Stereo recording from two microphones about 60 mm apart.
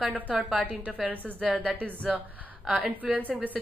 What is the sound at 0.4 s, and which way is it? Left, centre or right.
Speech, centre.